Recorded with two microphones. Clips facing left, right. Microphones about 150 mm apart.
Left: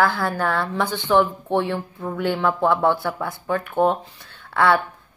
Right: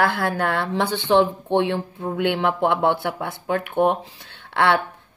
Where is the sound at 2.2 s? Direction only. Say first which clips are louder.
Even; 65° right (ahead or behind).